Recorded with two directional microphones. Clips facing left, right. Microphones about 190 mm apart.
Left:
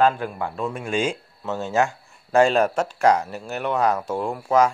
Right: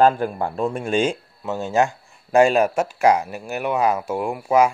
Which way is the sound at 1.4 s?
15° right (ahead or behind).